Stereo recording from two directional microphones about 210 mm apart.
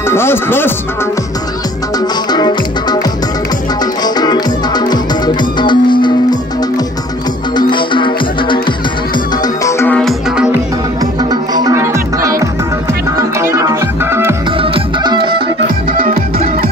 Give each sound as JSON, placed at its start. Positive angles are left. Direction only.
{"t": 0.1, "sound": "speech", "side_deg": 10}
{"t": 2.3, "sound": "music", "side_deg": 20}
{"t": 4.0, "sound": "music", "side_deg": 20}
{"t": 7.5, "sound": "music", "side_deg": 25}
{"t": 9.7, "sound": "music", "side_deg": 10}
{"t": 11.5, "sound": "music", "side_deg": -15}
{"t": 16.0, "sound": "music", "side_deg": -40}